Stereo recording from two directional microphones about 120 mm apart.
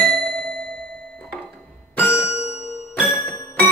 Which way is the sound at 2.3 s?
65° left (ahead or behind).